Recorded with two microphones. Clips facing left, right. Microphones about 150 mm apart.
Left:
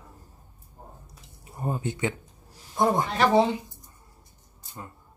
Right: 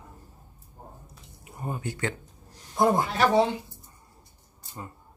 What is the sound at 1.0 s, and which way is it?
Drip, 35° left (ahead or behind).